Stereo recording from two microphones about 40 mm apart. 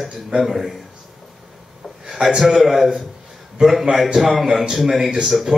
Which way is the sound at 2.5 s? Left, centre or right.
Centre.